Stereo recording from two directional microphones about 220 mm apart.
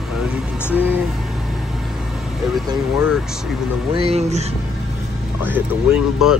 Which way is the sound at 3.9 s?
25° right (ahead or behind).